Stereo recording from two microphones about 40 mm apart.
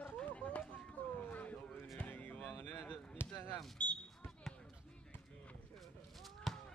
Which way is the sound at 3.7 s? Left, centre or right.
Left.